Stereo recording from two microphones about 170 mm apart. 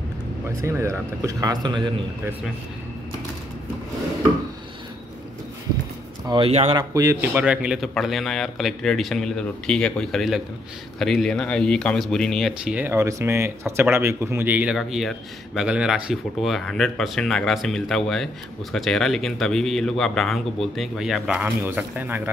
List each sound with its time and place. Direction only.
0.6 s a man's voice: 15° right (ahead or behind)
6.2 s speech: 30° right (ahead or behind)
6.8 s a man's voice: 20° right (ahead or behind)